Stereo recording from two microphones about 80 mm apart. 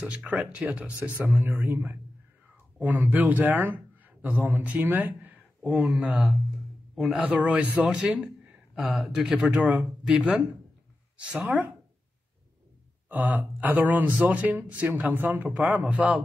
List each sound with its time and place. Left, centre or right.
0.0 s speech: centre
5.6 s speech: centre
7.8 s speech: centre
8.1 s a sound: centre
8.8 s speech: centre
9.3 s speech: centre
9.8 s speech: centre
13.1 s speech: right